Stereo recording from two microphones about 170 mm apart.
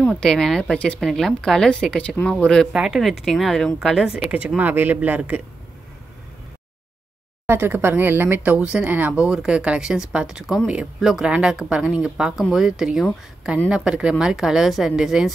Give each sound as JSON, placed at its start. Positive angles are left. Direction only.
{"t": 0.0, "sound": "a woman's voice", "side_deg": 5}
{"t": 7.4, "sound": "a woman's voice", "side_deg": -15}